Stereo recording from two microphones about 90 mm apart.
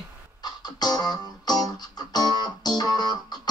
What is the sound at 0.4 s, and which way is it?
Music, 50° left (ahead or behind).